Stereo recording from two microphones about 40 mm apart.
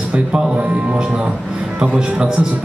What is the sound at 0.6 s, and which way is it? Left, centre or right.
A man's voice, right.